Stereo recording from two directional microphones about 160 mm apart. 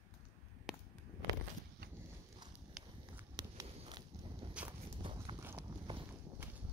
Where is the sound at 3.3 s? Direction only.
25° right (ahead or behind).